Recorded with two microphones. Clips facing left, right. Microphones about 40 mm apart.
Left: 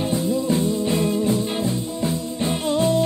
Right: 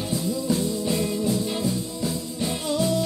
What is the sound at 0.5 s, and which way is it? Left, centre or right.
Music, left.